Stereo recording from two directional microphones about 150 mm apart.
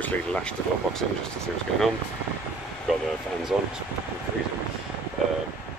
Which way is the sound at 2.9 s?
Centre (ahead or behind).